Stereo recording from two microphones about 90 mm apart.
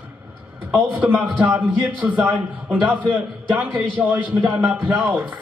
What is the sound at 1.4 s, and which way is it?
A man's voice, 15° right (ahead or behind).